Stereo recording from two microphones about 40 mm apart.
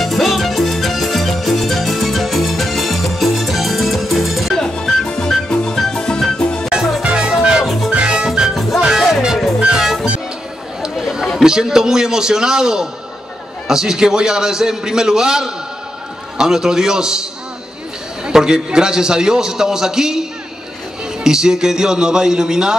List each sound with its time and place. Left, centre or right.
0.0 s music: centre
4.6 s music: centre
7.0 s music: right
8.8 s music: centre
11.0 s chatter: centre
11.4 s a man's voice: centre
18.3 s a man's voice: centre